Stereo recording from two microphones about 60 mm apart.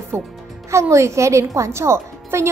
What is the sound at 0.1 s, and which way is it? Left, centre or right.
A woman's voice, right.